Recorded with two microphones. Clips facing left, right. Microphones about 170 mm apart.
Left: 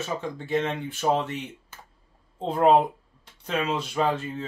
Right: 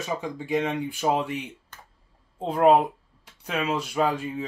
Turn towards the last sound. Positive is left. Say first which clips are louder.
# right 1 dB
turn(degrees=-10)  # may be behind; listen again after turning